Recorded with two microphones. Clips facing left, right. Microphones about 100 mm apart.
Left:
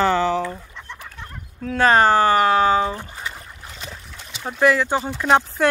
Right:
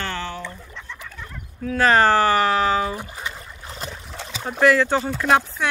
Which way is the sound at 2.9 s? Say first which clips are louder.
Even; 15° right (ahead or behind).